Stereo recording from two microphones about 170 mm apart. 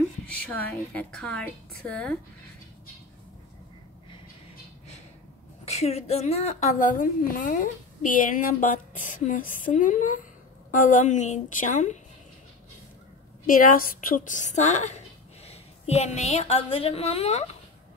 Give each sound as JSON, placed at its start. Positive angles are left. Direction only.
{"t": 0.3, "sound": "a woman's voice", "side_deg": 10}
{"t": 5.7, "sound": "a woman's voice", "side_deg": 40}
{"t": 13.5, "sound": "a woman's voice", "side_deg": 55}